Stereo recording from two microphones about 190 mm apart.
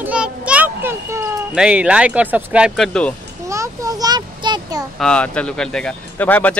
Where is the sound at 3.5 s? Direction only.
15° right (ahead or behind).